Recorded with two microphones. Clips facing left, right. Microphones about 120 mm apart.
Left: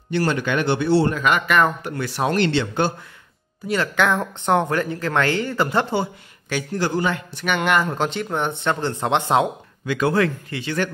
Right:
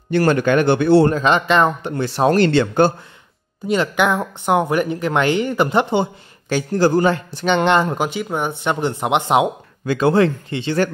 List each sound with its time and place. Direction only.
0.1 s speech: 50° right (ahead or behind)
1.1 s speech: 30° right (ahead or behind); by 2.9 s 45° right (ahead or behind)
3.6 s speech: 20° right (ahead or behind)
6.5 s a man's voice: 35° right (ahead or behind)
7.3 s speech: 25° right (ahead or behind)
8.0 s speech: 5° right (ahead or behind)
9.8 s speech: 30° right (ahead or behind)